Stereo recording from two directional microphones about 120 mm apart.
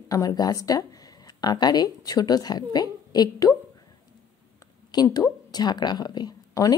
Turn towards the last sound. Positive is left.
turn(degrees=35)  # may be behind; listen again after turning